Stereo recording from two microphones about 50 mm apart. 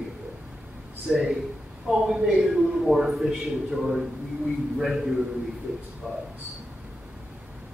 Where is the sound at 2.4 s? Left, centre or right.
Centre.